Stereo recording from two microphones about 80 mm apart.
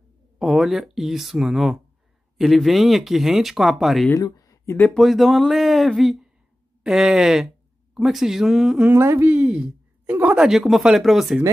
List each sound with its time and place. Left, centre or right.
0.4 s speech: centre
4.2 s a sound: left
4.9 s speech: centre
8.8 s speech: right
9.3 s speech: centre